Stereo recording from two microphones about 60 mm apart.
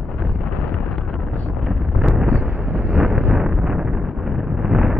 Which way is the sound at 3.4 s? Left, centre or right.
Centre.